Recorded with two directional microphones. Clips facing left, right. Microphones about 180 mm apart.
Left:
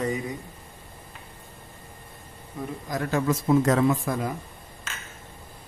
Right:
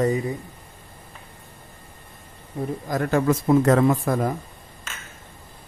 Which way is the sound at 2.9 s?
55° right (ahead or behind).